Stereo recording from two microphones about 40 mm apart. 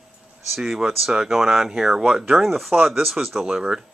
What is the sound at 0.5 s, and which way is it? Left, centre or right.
Speech, centre.